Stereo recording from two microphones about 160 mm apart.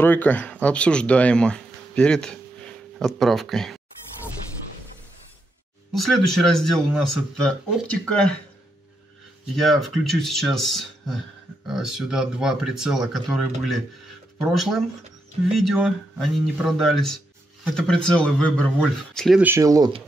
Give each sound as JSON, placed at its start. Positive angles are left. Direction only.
{"t": 0.0, "sound": "speech", "side_deg": 10}
{"t": 5.9, "sound": "a man's voice", "side_deg": 0}
{"t": 9.6, "sound": "a man's voice", "side_deg": 0}
{"t": 19.4, "sound": "speech", "side_deg": -20}